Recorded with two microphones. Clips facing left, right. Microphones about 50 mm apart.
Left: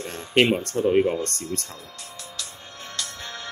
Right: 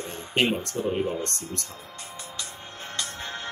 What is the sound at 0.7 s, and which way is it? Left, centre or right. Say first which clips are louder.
Speech: left 6 dB; left.